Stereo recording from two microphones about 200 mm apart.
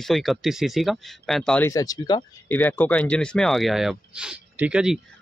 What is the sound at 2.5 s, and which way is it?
Speech, 10° left (ahead or behind).